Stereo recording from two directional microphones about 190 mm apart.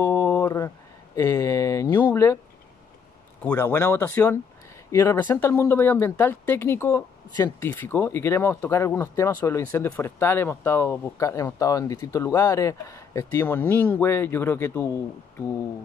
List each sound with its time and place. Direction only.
0.0 s a sound: 15° left (ahead or behind)
1.1 s speech: 15° left (ahead or behind)
3.4 s speech: 15° left (ahead or behind)